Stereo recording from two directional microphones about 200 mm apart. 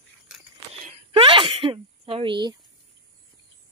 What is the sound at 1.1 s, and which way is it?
Speech, 25° right (ahead or behind).